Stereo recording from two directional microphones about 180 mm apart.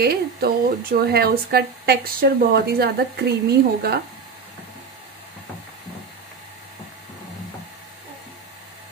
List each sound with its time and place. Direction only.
0.0 s speech: 60° right (ahead or behind)